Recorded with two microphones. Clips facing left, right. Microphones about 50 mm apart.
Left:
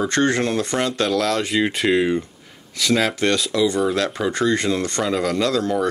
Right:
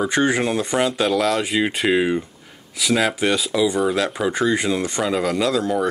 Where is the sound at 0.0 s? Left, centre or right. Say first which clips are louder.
Even; centre.